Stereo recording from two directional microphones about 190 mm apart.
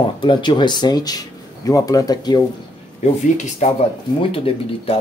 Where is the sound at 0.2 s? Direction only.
25° left (ahead or behind).